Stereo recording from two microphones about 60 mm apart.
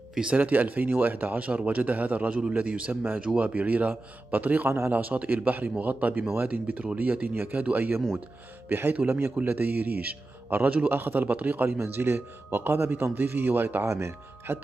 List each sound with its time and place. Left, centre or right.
0.1 s speech: centre
0.4 s speech: right
4.6 s speech: right
4.9 s a man's voice: right
13.8 s speech: right